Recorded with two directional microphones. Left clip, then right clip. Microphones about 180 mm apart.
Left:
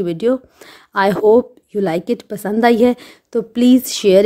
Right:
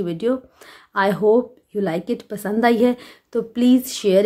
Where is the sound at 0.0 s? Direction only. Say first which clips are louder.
Left 5 dB; 40° left (ahead or behind).